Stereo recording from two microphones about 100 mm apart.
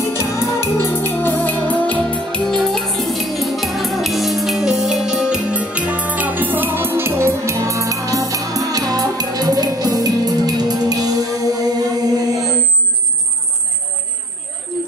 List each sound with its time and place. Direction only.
0.0 s music: 25° left (ahead or behind); by 12.4 s 35° right (ahead or behind)